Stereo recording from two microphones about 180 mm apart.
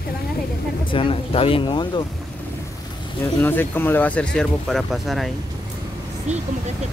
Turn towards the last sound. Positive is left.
turn(degrees=-40)  # may be behind; listen again after turning